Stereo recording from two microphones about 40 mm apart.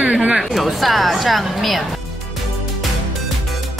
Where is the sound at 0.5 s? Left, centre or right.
Centre.